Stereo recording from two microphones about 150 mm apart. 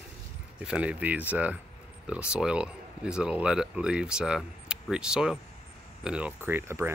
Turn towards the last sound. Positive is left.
turn(degrees=-15)  # may be behind; listen again after turning